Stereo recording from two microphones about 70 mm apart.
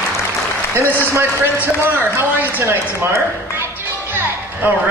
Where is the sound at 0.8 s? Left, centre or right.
Left.